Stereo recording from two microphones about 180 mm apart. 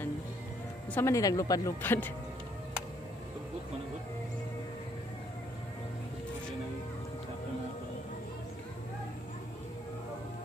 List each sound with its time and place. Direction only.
0.9 s speech: 15° left (ahead or behind)